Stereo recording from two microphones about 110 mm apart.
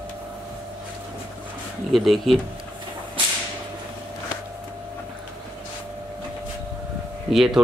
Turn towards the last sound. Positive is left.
turn(degrees=0)  # may be behind; listen again after turning